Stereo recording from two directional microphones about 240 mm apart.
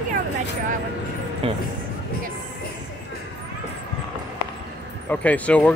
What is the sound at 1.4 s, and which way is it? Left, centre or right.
Speech, right.